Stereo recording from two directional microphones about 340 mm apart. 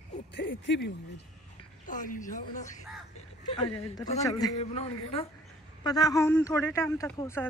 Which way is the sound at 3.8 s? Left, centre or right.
Centre.